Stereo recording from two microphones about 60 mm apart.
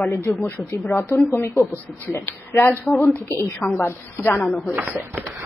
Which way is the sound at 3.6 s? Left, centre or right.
Left.